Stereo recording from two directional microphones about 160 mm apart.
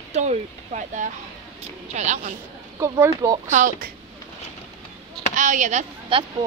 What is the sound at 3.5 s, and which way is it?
Speech, 55° right (ahead or behind).